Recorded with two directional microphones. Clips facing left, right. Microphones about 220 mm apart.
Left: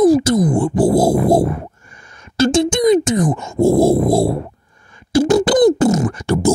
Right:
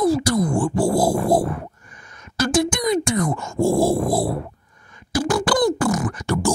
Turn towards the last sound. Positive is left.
turn(degrees=25)  # may be behind; listen again after turning